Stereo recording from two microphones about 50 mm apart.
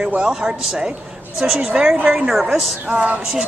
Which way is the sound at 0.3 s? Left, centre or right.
Centre.